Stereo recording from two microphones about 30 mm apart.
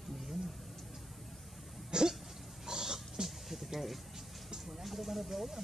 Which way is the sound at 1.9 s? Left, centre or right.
Right.